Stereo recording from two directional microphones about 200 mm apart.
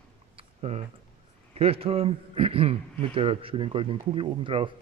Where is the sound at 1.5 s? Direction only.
30° right (ahead or behind).